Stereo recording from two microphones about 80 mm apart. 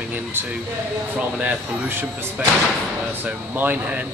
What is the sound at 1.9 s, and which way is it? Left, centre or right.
Speech, right.